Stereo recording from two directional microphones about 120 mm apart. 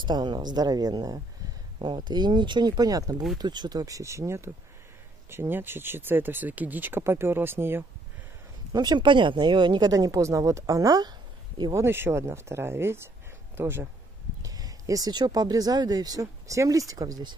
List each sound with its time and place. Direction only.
0.0 s speech: 40° right (ahead or behind); by 7.8 s 20° right (ahead or behind)
8.7 s speech: 35° right (ahead or behind)
11.7 s speech: 20° right (ahead or behind)
14.4 s speech: 30° right (ahead or behind)